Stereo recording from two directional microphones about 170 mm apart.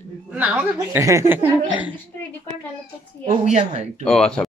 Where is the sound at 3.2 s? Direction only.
45° right (ahead or behind).